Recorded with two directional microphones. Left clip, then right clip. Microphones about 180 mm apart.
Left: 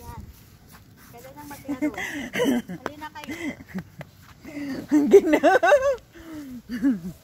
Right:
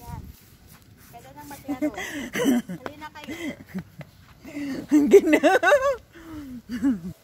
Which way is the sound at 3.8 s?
55° left (ahead or behind).